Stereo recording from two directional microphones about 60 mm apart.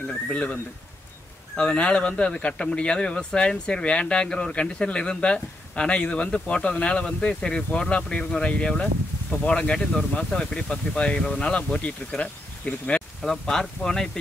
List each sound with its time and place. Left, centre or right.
0.3 s speech: left
1.6 s speech: centre
13.2 s speech: centre